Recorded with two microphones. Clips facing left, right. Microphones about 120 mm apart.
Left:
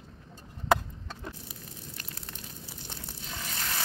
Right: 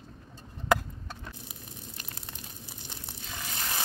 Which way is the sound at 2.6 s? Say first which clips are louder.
Left 1 dB; 20° right (ahead or behind).